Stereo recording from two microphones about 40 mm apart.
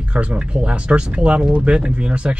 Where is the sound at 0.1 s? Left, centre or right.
Right.